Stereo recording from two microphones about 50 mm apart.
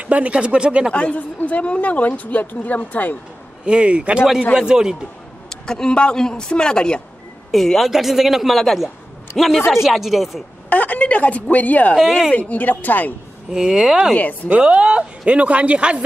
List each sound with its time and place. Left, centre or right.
0.0 s speech: right
0.9 s speech: left
3.6 s speech: right
4.6 s speech: centre
5.5 s speech: centre
7.5 s a woman's voice: centre
9.8 s a woman's voice: centre
10.7 s a woman's voice: left
12.0 s a woman's voice: centre
12.3 s speech: left
13.5 s speech: centre
14.1 s speech: left
14.5 s speech: right